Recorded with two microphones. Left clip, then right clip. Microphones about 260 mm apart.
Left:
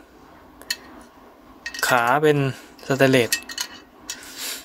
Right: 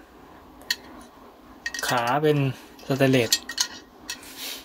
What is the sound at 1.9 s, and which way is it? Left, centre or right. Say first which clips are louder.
Speech: left 5 dB; centre.